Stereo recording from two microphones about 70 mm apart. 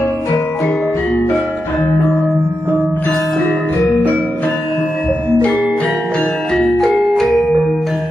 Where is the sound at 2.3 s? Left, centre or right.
Right.